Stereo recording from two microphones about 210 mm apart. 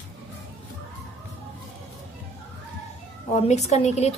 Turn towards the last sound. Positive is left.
turn(degrees=30)  # may be behind; listen again after turning